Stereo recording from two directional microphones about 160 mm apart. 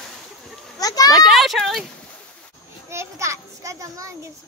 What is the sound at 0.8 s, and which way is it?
Children playing, 25° left (ahead or behind).